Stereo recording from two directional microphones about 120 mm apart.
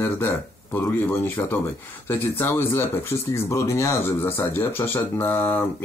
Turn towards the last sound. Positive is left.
turn(degrees=20)  # may be behind; listen again after turning